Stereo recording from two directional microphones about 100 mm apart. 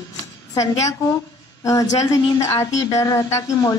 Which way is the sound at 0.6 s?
35° left (ahead or behind).